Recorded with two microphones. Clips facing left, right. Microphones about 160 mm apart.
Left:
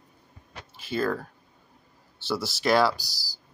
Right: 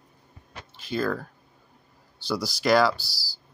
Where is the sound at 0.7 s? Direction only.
5° left (ahead or behind).